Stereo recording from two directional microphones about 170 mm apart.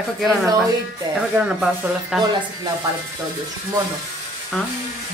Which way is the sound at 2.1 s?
Centre (ahead or behind).